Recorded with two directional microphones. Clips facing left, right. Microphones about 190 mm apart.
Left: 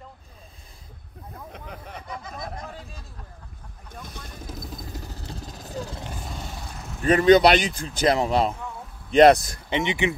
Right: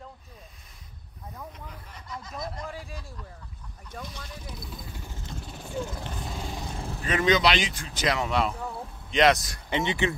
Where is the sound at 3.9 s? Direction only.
50° left (ahead or behind).